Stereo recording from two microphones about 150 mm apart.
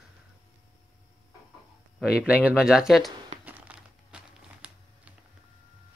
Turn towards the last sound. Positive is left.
turn(degrees=-10)  # may be behind; listen again after turning